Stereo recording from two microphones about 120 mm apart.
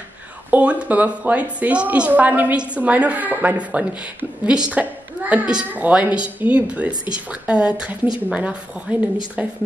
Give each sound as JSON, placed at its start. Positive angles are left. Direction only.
{"t": 0.5, "sound": "a woman's voice", "side_deg": -10}